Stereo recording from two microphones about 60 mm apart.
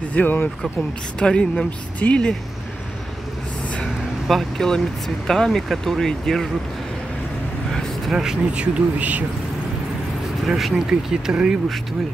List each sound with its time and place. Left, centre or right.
0.1 s speech: left
1.2 s speech: centre
3.8 s speech: centre
8.1 s speech: centre
8.5 s speech: centre
10.4 s speech: centre